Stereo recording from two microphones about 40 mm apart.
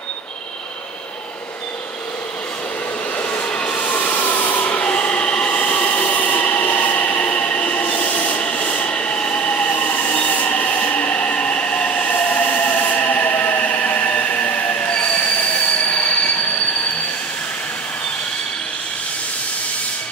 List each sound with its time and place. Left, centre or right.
3.2 s rub: left
5.3 s train: left
6.3 s train: left
10.1 s rub: left
11.3 s train: left
12.5 s a sound: left
14.9 s train: left